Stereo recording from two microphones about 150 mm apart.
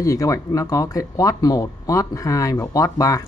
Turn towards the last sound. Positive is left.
turn(degrees=20)  # may be behind; listen again after turning